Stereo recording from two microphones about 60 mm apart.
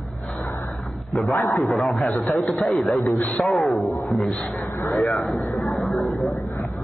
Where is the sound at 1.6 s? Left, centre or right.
Centre.